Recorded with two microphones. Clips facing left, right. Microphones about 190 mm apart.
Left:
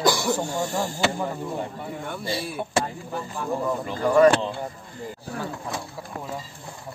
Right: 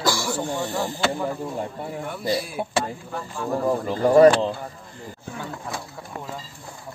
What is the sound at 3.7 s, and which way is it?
Speech, 35° right (ahead or behind).